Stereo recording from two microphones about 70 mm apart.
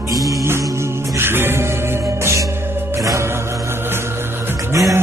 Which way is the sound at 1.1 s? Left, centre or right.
Right.